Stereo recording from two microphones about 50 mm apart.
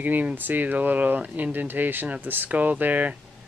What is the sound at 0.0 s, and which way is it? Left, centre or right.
Speech, right.